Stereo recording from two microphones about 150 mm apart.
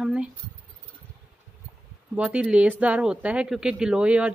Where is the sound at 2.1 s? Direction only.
5° right (ahead or behind).